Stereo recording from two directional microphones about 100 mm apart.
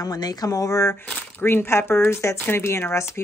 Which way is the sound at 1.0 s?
20° left (ahead or behind).